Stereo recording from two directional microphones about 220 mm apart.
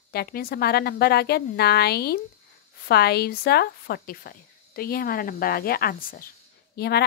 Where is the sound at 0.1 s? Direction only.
45° left (ahead or behind).